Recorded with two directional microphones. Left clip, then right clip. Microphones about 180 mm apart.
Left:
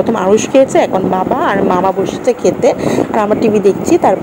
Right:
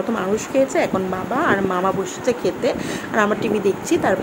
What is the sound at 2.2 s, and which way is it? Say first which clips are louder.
A woman's voice: left 9 dB; 25° left (ahead or behind).